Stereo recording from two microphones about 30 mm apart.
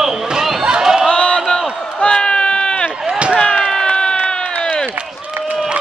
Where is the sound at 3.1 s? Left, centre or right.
Right.